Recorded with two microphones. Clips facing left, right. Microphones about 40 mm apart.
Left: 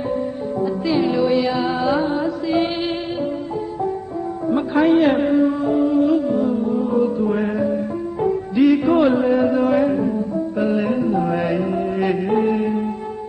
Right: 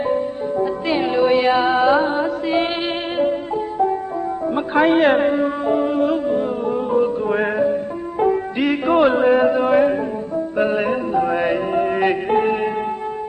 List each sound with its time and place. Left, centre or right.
0.1 s music: right
4.7 s music: right
8.2 s music: right
9.5 s music: right
9.8 s music: right
11.1 s music: right
11.5 s music: right